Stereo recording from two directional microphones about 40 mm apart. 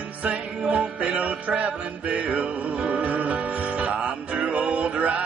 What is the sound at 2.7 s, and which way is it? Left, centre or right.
Music, right.